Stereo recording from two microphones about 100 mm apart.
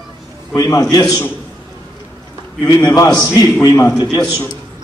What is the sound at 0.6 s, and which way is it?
Speech, 40° left (ahead or behind).